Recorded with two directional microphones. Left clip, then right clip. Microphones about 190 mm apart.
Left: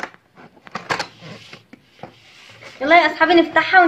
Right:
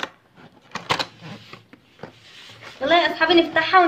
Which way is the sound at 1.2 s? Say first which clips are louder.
Left 2 dB; centre (ahead or behind).